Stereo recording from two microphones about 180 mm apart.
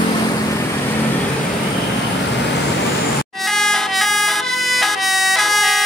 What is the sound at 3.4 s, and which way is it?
Emergency vehicle, 5° left (ahead or behind).